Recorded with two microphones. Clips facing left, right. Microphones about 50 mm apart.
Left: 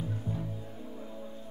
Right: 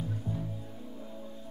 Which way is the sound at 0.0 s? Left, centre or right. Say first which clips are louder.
Even; centre.